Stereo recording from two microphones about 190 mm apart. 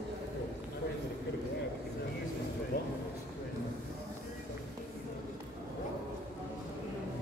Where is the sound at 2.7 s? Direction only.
50° left (ahead or behind).